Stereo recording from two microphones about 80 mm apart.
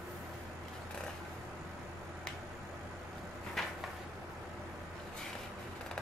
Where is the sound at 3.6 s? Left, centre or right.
Centre.